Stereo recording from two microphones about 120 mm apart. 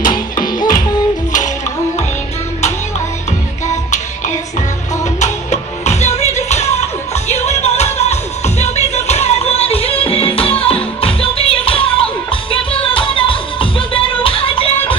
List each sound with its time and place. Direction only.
0.1 s music: 35° left (ahead or behind)
5.2 s music: 70° left (ahead or behind); by 14.7 s 50° left (ahead or behind)